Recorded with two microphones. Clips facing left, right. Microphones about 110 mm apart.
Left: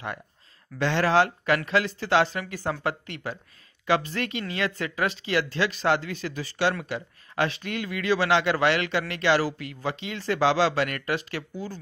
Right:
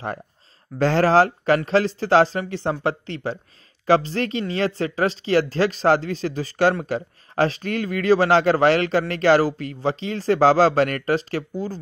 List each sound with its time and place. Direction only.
0.7 s speech: 40° right (ahead or behind)